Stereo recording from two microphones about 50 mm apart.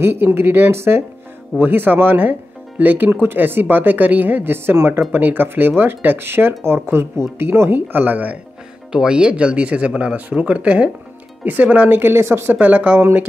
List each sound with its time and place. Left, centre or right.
0.0 s speech: right
1.6 s speech: right
7.9 s speech: right
8.9 s speech: centre
11.9 s speech: right
12.4 s speech: right